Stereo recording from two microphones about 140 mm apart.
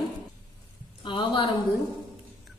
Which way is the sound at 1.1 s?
35° left (ahead or behind).